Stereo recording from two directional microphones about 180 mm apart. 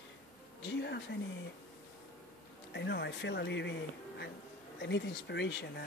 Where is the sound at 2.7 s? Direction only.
70° left (ahead or behind).